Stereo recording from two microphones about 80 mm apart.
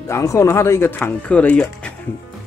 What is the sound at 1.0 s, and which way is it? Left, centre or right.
Speech, centre.